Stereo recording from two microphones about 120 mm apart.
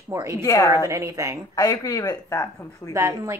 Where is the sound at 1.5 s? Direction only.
30° left (ahead or behind).